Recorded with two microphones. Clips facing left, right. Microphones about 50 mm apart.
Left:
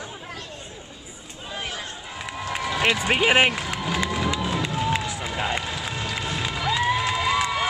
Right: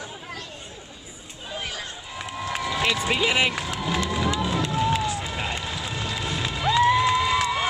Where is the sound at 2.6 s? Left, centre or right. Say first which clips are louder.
Left 3 dB; left.